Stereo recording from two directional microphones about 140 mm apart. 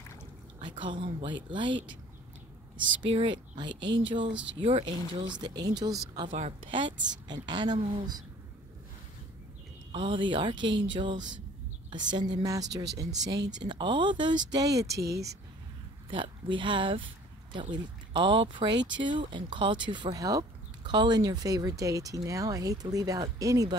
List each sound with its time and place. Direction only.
0.6 s a woman's voice: 35° right (ahead or behind)
3.0 s speech: 35° right (ahead or behind)
5.2 s a woman's voice: 30° right (ahead or behind)
9.9 s speech: 35° right (ahead or behind)
16.1 s speech: 35° right (ahead or behind)